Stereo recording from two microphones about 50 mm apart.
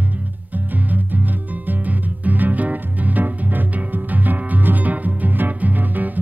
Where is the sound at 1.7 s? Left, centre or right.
Right.